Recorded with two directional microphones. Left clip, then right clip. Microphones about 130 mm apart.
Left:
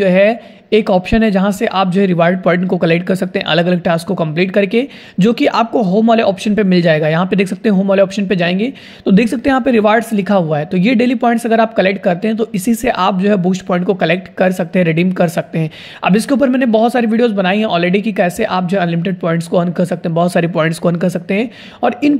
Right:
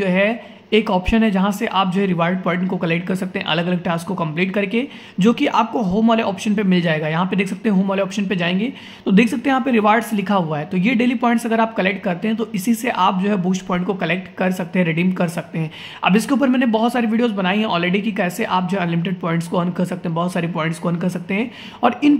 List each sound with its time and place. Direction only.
0.0 s speech: 40° left (ahead or behind)
5.7 s speech: 90° left
6.0 s speech: 35° left (ahead or behind)
16.1 s speech: 30° left (ahead or behind)